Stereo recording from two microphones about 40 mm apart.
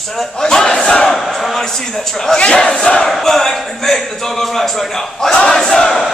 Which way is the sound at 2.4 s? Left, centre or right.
Centre.